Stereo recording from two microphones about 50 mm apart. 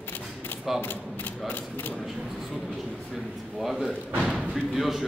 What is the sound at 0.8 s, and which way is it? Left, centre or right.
Mechanisms, left.